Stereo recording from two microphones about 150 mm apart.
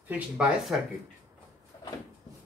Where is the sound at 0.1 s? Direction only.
5° right (ahead or behind).